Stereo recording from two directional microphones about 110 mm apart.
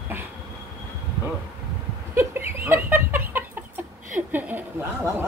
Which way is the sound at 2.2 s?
20° right (ahead or behind).